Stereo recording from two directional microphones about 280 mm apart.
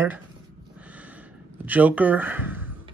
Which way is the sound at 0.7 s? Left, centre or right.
Centre.